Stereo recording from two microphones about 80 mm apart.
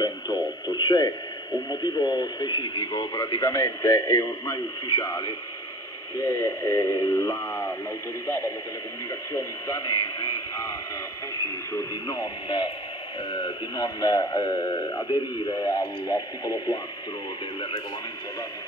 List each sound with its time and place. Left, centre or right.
0.0 s a man's voice: left
8.3 s speech: left
12.1 s speech: left
13.3 s a man's voice: left